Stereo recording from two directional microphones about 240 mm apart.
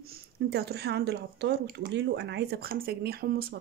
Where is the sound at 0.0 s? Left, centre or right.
Right.